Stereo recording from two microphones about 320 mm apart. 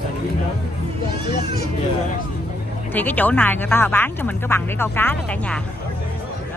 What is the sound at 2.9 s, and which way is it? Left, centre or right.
Speech, centre.